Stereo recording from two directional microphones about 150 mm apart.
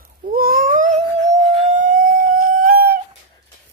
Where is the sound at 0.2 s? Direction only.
75° right (ahead or behind).